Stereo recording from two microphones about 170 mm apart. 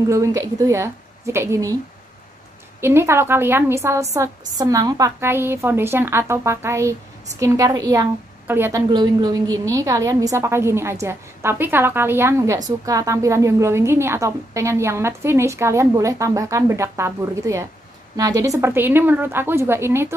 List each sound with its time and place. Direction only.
0.1 s a woman's voice: 20° right (ahead or behind)
2.8 s a woman's voice: 15° right (ahead or behind)
8.9 s a woman's voice: 25° right (ahead or behind)